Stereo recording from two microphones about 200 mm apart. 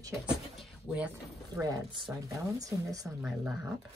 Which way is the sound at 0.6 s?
5° right (ahead or behind).